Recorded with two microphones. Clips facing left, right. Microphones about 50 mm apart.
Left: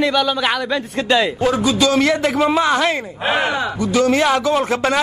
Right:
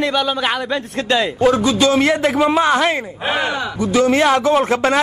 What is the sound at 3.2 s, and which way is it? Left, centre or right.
Speech, centre.